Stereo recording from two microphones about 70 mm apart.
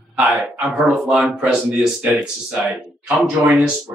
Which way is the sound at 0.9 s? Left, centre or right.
Centre.